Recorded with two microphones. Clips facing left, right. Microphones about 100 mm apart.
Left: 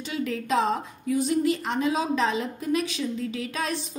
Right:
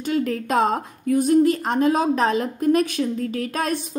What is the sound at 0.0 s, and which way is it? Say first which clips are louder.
Speech: right 7 dB; 50° right (ahead or behind).